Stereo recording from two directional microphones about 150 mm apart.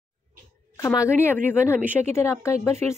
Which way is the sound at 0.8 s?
20° left (ahead or behind).